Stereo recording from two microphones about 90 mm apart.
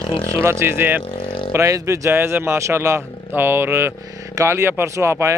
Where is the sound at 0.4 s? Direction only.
30° right (ahead or behind).